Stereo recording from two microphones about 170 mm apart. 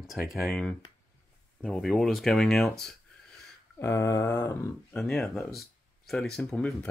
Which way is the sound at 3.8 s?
20° left (ahead or behind).